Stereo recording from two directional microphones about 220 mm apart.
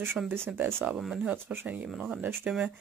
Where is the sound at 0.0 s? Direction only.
10° right (ahead or behind).